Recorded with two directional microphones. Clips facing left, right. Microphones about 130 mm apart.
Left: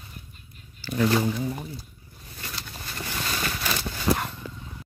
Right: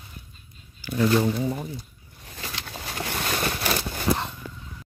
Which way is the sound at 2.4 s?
90° right.